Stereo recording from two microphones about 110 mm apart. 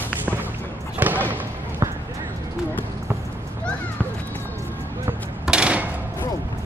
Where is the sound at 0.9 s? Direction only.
15° right (ahead or behind).